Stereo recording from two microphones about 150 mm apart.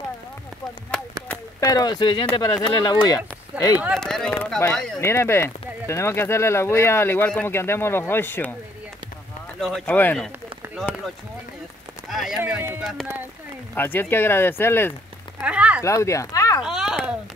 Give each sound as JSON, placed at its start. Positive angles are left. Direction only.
{"t": 1.3, "sound": "speech", "side_deg": 20}
{"t": 3.9, "sound": "speech", "side_deg": 5}
{"t": 5.0, "sound": "speech", "side_deg": 15}
{"t": 9.6, "sound": "speech", "side_deg": 0}
{"t": 12.1, "sound": "speech", "side_deg": 0}
{"t": 13.7, "sound": "speech", "side_deg": 15}
{"t": 15.4, "sound": "a sound", "side_deg": -10}
{"t": 15.8, "sound": "speech", "side_deg": 20}
{"t": 16.6, "sound": "a sound", "side_deg": -5}